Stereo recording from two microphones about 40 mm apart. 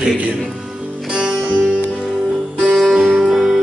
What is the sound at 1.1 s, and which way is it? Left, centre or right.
Music, right.